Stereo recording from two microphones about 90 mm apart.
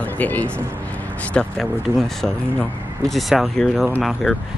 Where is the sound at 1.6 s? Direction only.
5° left (ahead or behind).